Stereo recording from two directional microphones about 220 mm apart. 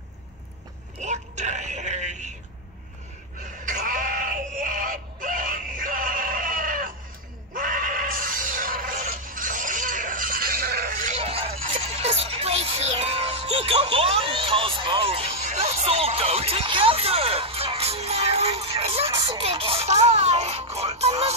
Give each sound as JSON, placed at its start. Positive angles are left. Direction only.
{"t": 1.0, "sound": "a sound", "side_deg": -30}
{"t": 3.6, "sound": "screaming", "side_deg": -35}
{"t": 7.5, "sound": "neigh", "side_deg": -40}